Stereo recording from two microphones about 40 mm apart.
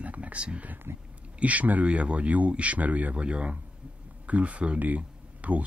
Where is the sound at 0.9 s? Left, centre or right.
Right.